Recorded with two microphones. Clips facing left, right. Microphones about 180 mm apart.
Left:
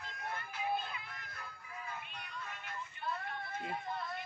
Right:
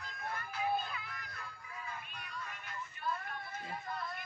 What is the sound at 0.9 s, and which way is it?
Music, 25° left (ahead or behind).